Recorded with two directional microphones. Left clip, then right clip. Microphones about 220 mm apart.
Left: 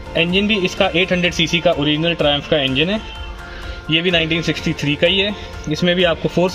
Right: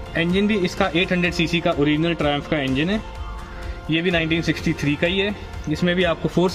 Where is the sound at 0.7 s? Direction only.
20° left (ahead or behind).